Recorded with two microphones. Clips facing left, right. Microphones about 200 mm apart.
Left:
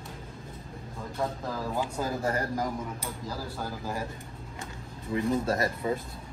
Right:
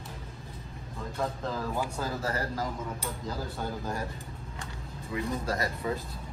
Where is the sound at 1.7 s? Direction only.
20° left (ahead or behind).